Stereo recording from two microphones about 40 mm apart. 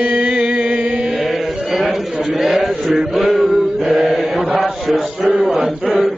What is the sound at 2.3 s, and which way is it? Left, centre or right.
Speech, centre.